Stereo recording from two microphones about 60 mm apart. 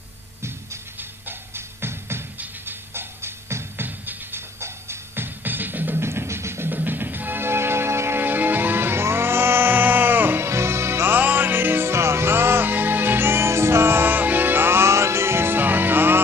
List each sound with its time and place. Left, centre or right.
1.8 s music: right
6.0 s music: right
6.7 s music: right
11.1 s music: right